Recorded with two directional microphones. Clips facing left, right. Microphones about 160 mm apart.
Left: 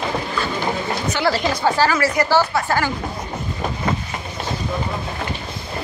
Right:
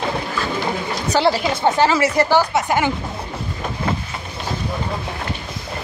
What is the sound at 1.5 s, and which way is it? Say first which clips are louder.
Speech: right 2 dB; 25° right (ahead or behind).